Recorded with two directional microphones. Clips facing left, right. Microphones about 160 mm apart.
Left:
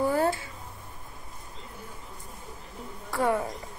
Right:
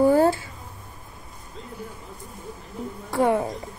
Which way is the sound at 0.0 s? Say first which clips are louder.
Right 8 dB; 30° right (ahead or behind).